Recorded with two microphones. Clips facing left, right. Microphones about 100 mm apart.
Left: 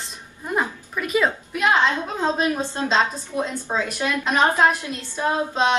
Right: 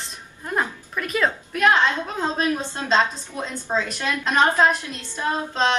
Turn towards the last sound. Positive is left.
turn(degrees=15)  # may be behind; listen again after turning